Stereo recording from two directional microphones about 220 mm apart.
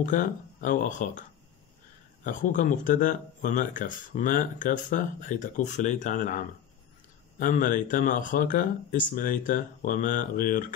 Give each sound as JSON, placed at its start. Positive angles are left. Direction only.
{"t": 0.0, "sound": "speech", "side_deg": 35}
{"t": 2.2, "sound": "speech", "side_deg": 35}